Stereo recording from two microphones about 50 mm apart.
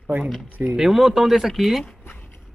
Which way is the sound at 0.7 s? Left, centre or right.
Centre.